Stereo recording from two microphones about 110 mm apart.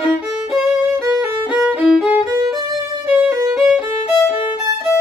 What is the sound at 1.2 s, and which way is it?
Violin, 10° right (ahead or behind).